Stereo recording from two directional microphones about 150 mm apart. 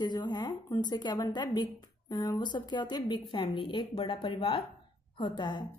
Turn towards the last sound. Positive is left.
turn(degrees=30)  # may be behind; listen again after turning